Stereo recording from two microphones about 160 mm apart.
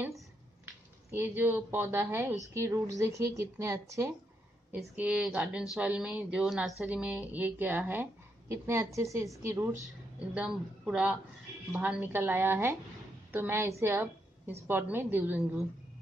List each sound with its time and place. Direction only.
1.1 s speech: 10° right (ahead or behind)
4.7 s speech: 5° right (ahead or behind)
10.3 s a woman's voice: 5° right (ahead or behind)